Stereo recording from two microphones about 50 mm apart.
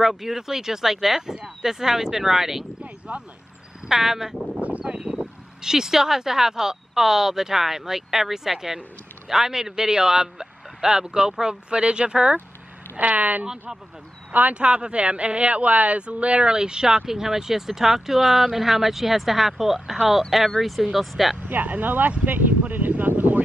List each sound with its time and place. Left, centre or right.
0.0 s speech: centre
3.1 s speech: right
3.9 s speech: centre
4.6 s a sound: right
4.8 s speech: centre
12.9 s speech: right; by 21.4 s centre
21.5 s speech: right
22.1 s a sound: right